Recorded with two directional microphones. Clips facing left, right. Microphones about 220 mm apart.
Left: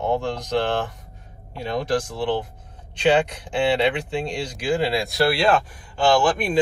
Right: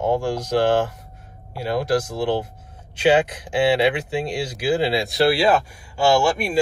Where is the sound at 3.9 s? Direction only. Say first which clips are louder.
Right 2 dB; 5° right (ahead or behind).